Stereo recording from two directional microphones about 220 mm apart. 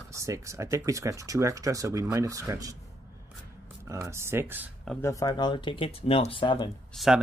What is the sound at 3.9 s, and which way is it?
Speech, 15° right (ahead or behind).